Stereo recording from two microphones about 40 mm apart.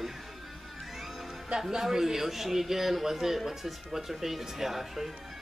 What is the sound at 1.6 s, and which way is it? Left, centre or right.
A man's voice, centre.